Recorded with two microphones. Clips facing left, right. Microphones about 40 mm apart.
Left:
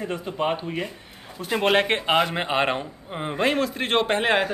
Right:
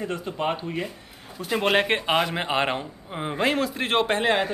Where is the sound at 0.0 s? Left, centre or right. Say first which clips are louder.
Left 1 dB; centre.